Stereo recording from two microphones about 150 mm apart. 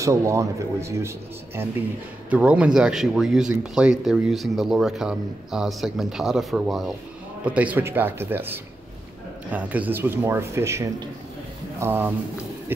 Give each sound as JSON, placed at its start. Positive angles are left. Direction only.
{"t": 0.0, "sound": "speech", "side_deg": -20}